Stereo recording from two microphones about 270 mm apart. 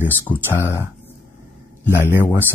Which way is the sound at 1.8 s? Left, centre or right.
Centre.